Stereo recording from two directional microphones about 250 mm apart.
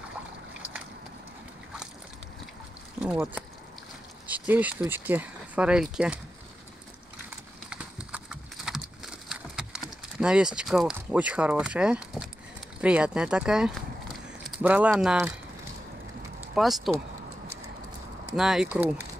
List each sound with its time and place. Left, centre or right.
3.0 s speech: centre
7.7 s horse: centre
12.8 s speech: centre
16.5 s speech: centre
18.3 s speech: centre